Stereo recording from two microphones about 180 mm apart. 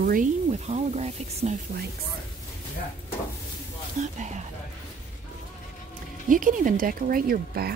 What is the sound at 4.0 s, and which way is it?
Speech, 45° right (ahead or behind).